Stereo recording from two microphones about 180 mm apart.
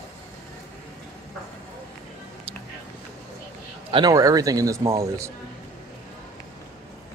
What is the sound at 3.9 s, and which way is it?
A man's voice, 20° right (ahead or behind).